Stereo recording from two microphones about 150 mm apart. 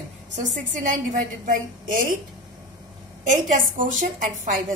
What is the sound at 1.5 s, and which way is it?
Speech, 65° right (ahead or behind).